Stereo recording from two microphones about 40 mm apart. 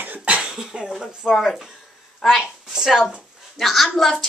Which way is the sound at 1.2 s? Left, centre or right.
Centre.